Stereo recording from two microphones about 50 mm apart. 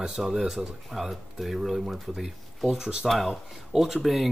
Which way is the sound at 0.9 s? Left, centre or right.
Centre.